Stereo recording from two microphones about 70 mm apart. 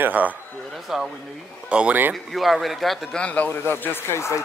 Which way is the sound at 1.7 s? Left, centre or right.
Centre.